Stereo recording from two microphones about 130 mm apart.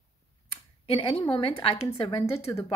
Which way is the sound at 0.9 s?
45° left (ahead or behind).